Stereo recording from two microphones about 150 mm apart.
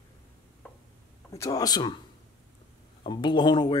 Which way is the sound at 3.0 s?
30° left (ahead or behind).